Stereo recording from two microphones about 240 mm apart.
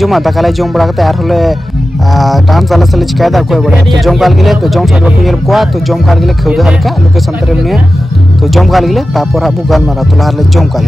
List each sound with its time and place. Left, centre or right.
0.0 s speech: centre
8.5 s speech: centre